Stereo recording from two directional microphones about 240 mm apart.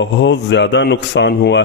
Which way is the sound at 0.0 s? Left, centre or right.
Left.